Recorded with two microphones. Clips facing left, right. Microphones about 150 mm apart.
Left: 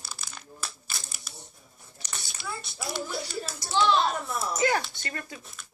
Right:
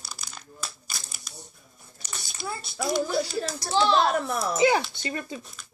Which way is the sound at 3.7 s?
35° right (ahead or behind).